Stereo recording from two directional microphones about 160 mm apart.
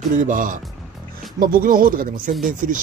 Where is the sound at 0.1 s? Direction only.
55° right (ahead or behind).